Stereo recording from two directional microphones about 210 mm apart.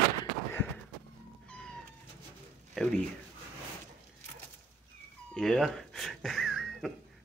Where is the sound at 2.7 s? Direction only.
5° left (ahead or behind).